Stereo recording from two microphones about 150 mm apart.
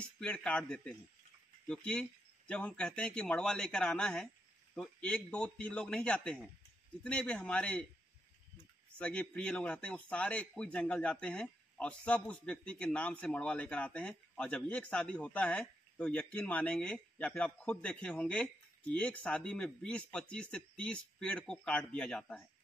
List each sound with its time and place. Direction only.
0.0 s a man's voice: 5° left (ahead or behind)
8.9 s a man's voice: 10° left (ahead or behind)